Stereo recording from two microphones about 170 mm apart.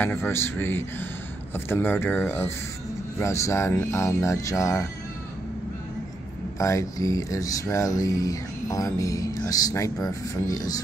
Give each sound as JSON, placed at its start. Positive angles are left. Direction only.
{"t": 0.0, "sound": "speech", "side_deg": 15}
{"t": 6.6, "sound": "speech", "side_deg": 20}